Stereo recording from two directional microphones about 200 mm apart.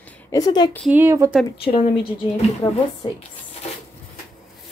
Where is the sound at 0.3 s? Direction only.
20° left (ahead or behind).